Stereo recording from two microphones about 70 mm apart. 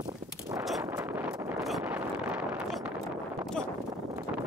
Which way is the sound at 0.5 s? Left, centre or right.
Right.